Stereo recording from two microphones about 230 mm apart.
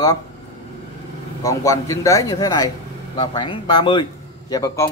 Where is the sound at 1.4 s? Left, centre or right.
Centre.